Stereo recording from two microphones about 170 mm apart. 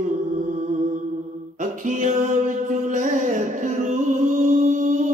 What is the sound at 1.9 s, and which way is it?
Music, 45° right (ahead or behind).